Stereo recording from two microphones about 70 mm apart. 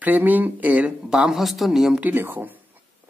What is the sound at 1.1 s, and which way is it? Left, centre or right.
Speech, centre.